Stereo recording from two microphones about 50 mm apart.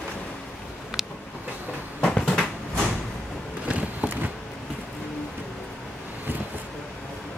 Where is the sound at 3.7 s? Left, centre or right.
Right.